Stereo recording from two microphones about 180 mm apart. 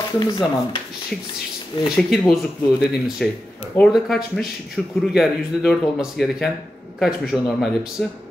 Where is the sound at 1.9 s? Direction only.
Centre (ahead or behind).